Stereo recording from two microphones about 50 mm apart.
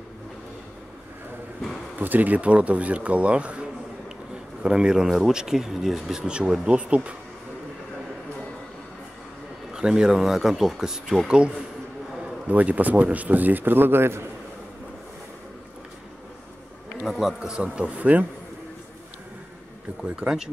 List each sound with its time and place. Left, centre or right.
2.0 s speech: right
4.6 s speech: centre
6.2 s speech: centre
9.7 s speech: centre
10.5 s speech: centre
10.8 s speech: centre
12.4 s a man's voice: right
17.0 s speech: centre
17.8 s speech: right
20.2 s speech: centre